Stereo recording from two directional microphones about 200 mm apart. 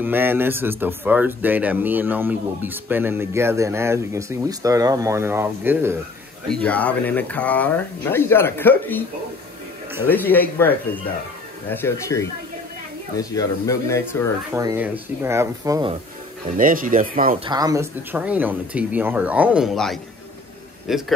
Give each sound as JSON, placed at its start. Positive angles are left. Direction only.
{"t": 0.0, "sound": "speech", "side_deg": -10}
{"t": 6.5, "sound": "speech", "side_deg": 5}
{"t": 10.0, "sound": "speech", "side_deg": 10}
{"t": 11.7, "sound": "speech", "side_deg": 15}
{"t": 14.5, "sound": "speech", "side_deg": -10}
{"t": 16.4, "sound": "speech", "side_deg": -45}
{"t": 17.5, "sound": "speech", "side_deg": -20}
{"t": 18.1, "sound": "a man's voice", "side_deg": -5}